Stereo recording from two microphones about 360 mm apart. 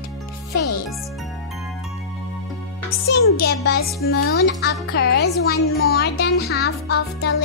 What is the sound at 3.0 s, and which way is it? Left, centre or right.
A child's voice, left.